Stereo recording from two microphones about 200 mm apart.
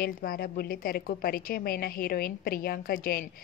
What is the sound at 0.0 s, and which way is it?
A woman's voice, 50° left (ahead or behind).